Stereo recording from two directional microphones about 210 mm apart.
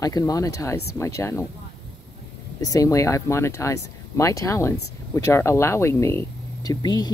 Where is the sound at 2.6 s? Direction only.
15° left (ahead or behind).